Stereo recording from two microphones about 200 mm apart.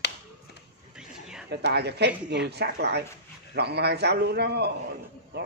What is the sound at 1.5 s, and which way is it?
Speech, 55° right (ahead or behind).